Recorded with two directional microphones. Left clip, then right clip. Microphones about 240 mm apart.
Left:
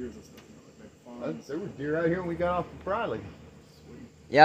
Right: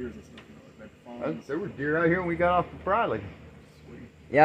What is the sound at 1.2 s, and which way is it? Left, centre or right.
Speech, centre.